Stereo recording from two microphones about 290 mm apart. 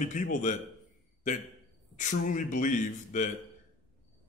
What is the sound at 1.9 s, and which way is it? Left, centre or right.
Speech, left.